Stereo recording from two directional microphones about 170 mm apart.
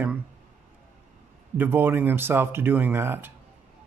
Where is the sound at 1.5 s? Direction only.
10° right (ahead or behind).